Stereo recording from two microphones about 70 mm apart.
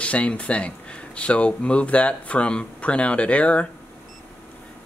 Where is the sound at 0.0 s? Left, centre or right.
Centre.